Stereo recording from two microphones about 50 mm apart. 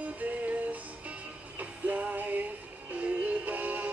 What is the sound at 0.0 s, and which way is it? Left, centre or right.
Music, right.